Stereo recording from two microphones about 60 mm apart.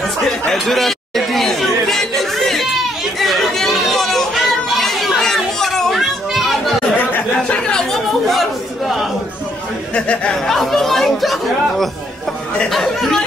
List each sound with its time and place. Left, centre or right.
0.5 s chatter: centre
7.4 s chatter: centre
7.7 s chatter: centre
9.9 s speech: left
10.4 s chatter: centre
12.6 s speech: centre